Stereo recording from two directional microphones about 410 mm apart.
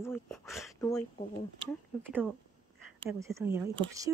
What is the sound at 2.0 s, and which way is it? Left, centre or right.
Speech, centre.